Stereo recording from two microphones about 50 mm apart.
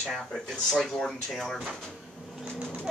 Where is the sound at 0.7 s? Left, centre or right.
Centre.